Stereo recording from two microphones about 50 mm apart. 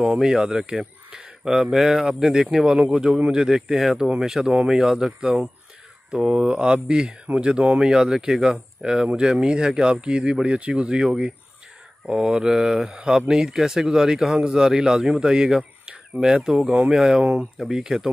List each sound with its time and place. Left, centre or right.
0.0 s speech: centre
17.2 s speech: right